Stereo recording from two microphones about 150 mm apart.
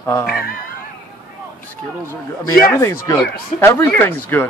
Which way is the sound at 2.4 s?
20° left (ahead or behind).